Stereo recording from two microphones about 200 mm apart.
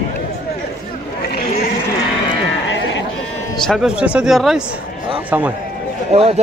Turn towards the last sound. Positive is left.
turn(degrees=-30)  # may be behind; listen again after turning